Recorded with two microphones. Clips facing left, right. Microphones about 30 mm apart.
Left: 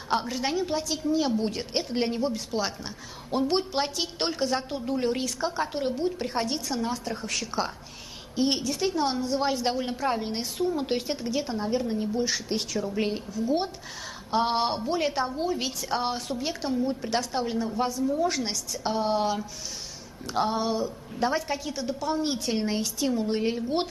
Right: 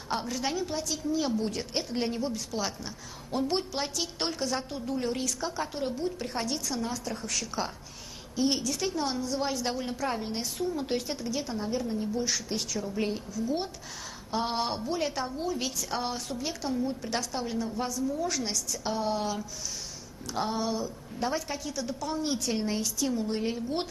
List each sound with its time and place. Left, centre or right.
0.1 s a woman's voice: left